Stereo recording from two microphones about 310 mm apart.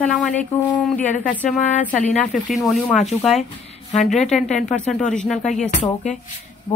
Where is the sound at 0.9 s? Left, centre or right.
Left.